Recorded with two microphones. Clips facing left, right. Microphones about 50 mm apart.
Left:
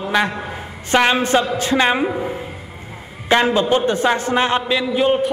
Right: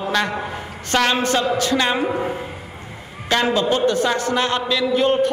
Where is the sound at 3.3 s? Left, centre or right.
Left.